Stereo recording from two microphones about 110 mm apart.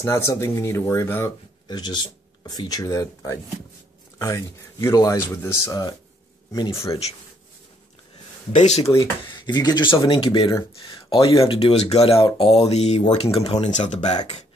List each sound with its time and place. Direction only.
0.0 s speech: 25° left (ahead or behind)
1.7 s speech: 40° left (ahead or behind)
8.5 s speech: 80° left
9.3 s speech: 40° left (ahead or behind)
11.7 s speech: 70° left (ahead or behind)
12.4 s a sound: 60° left (ahead or behind)
13.1 s speech: 65° left (ahead or behind); by 14.4 s 90° left